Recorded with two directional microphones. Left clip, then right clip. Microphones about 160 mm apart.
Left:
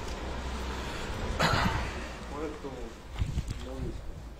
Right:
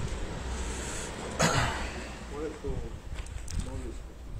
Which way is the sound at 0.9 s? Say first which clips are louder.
Right 1 dB; 90° right.